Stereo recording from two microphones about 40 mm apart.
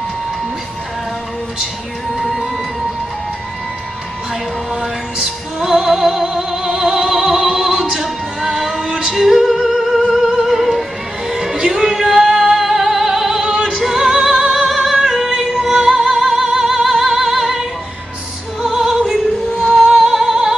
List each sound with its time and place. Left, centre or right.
5.2 s music: centre
6.7 s opera: centre
8.0 s music: centre
8.8 s music: right
9.1 s music: centre
11.2 s music: centre
11.9 s music: centre; by 14.5 s right
14.5 s music: centre
18.7 s opera: centre
19.6 s music: centre